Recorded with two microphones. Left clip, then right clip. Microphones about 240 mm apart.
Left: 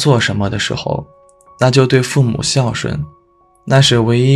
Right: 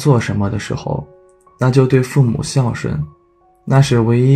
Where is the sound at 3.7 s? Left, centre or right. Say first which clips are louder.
Left 4 dB; centre.